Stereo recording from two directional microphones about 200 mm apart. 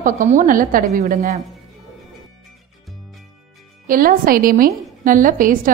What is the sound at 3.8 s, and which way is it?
A woman's voice, 45° right (ahead or behind).